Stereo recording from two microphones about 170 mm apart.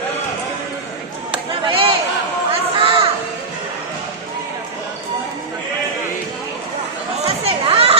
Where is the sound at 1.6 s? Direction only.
30° right (ahead or behind).